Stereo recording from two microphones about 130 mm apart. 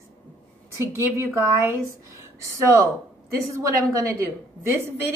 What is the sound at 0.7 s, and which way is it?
A woman's voice, 20° right (ahead or behind).